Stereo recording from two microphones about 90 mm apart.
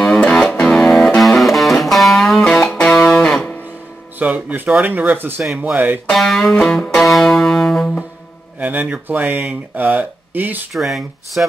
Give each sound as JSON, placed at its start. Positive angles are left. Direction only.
{"t": 0.0, "sound": "music", "side_deg": 10}
{"t": 4.2, "sound": "speech", "side_deg": -15}
{"t": 6.0, "sound": "music", "side_deg": 5}
{"t": 8.5, "sound": "speech", "side_deg": -15}
{"t": 10.7, "sound": "speech", "side_deg": 0}